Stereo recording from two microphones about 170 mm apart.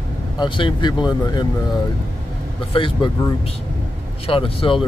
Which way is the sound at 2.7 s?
30° left (ahead or behind).